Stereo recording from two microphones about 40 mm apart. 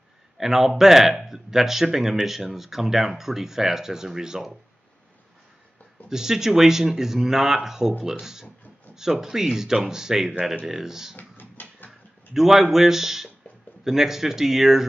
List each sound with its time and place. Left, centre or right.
0.4 s speech: centre
6.0 s speech: centre
11.1 s a sound: left
12.4 s speech: centre